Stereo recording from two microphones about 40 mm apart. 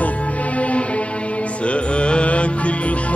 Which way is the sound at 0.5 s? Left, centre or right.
Left.